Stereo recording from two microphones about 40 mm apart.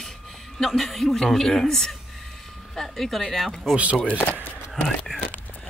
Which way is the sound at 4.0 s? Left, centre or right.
Left.